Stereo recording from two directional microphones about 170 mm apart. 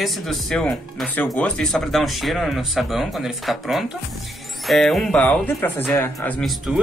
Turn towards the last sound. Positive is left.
turn(degrees=0)  # may be behind; listen again after turning